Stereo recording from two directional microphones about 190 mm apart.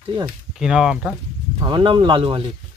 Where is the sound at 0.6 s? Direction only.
5° right (ahead or behind).